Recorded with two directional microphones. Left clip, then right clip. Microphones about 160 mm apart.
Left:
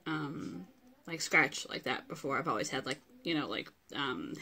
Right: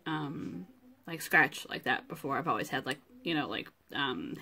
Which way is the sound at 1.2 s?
15° right (ahead or behind).